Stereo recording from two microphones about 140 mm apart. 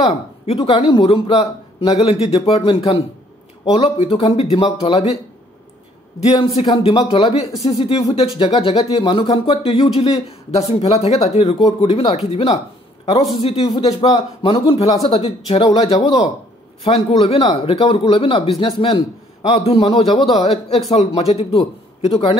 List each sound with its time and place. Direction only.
0.6 s a man's voice: 40° left (ahead or behind)
6.2 s a man's voice: 45° left (ahead or behind)
9.0 s a man's voice: 35° left (ahead or behind)
13.3 s speech: 45° left (ahead or behind)
15.0 s a man's voice: 40° left (ahead or behind)